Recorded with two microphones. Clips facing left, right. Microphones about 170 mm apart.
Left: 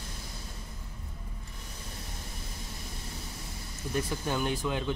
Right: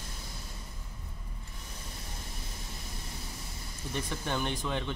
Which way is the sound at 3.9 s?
5° left (ahead or behind).